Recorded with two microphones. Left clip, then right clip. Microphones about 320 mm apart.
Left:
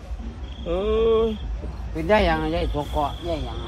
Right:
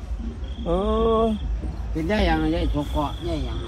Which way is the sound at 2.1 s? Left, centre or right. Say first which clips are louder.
Left 3 dB; left.